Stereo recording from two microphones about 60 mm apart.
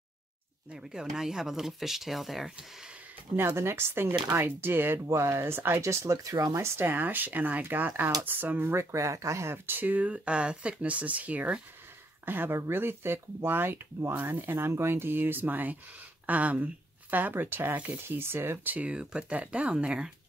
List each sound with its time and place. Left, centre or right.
0.7 s speech: centre
3.3 s speech: right
5.1 s speech: right
6.6 s speech: right
8.9 s speech: right
9.7 s speech: right
12.3 s speech: right
18.0 s speech: right; by 20.1 s centre